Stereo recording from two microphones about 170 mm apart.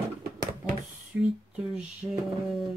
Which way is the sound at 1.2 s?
5° right (ahead or behind).